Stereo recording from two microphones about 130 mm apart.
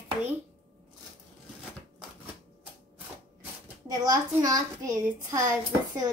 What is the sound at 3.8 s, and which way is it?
A child's voice, 30° right (ahead or behind).